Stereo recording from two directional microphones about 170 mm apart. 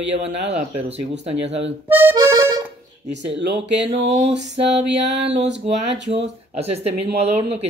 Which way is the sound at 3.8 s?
40° right (ahead or behind).